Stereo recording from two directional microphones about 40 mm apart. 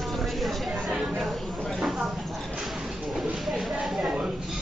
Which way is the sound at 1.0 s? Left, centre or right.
Centre.